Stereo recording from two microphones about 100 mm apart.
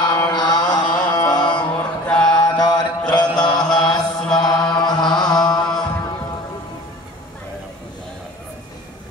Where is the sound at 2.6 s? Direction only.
45° left (ahead or behind).